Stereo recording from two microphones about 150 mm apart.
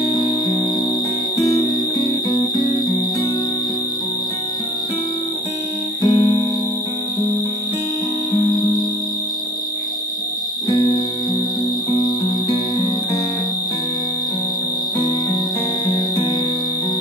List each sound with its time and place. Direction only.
6.0 s music: 30° left (ahead or behind)
10.7 s music: 30° left (ahead or behind)
15.9 s music: 35° left (ahead or behind)